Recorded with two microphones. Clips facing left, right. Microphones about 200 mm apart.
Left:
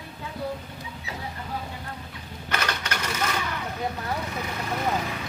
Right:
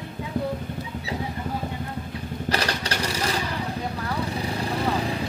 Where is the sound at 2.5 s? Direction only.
35° right (ahead or behind).